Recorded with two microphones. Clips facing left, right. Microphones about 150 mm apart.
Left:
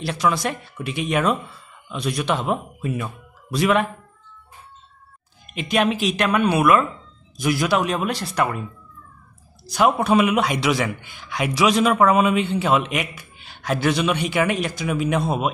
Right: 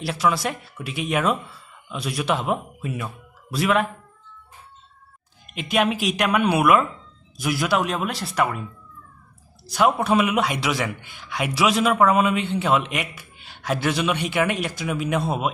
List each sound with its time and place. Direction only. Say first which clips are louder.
0.0 s a man's voice: left 1 dB; 5° right (ahead or behind)
5.5 s speech: left 1 dB; 5° right (ahead or behind)
7.3 s a man's voice: left 2 dB; centre (ahead or behind)
9.7 s a man's voice: left 2 dB; centre (ahead or behind)